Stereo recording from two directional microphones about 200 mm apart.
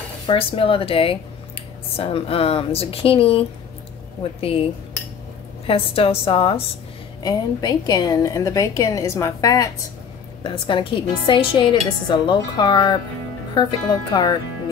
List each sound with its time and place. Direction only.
0.3 s a woman's voice: 30° left (ahead or behind)
5.7 s a woman's voice: 30° left (ahead or behind)